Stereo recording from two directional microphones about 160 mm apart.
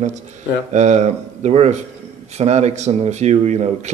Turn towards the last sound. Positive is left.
turn(degrees=-45)  # may be behind; listen again after turning